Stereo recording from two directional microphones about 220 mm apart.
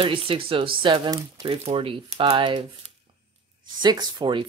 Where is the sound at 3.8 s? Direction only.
20° right (ahead or behind).